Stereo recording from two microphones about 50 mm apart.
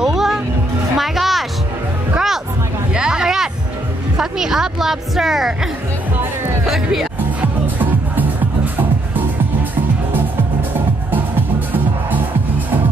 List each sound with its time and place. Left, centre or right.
0.0 s music: centre
2.9 s a sound: centre
4.2 s a woman's voice: centre
6.6 s speech: centre
7.6 s music: right